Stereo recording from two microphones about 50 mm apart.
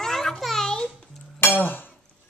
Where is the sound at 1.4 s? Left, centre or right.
Left.